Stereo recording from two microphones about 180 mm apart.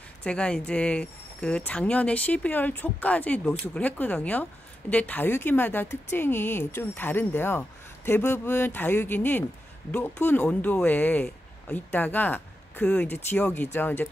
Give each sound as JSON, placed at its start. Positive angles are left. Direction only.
{"t": 0.2, "sound": "speech", "side_deg": 5}